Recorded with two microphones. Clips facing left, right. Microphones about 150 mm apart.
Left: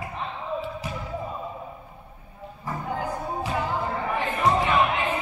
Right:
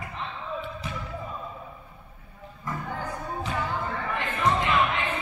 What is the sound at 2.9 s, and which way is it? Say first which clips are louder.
Music: left 7 dB; 10° left (ahead or behind).